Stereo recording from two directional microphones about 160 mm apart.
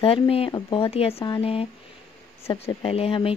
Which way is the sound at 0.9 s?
40° left (ahead or behind).